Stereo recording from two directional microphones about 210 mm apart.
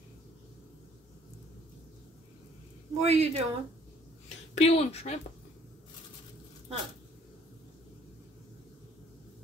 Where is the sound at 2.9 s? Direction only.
30° right (ahead or behind).